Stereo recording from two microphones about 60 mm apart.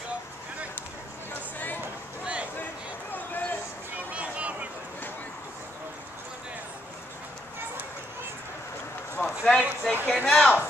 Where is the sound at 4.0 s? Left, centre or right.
Right.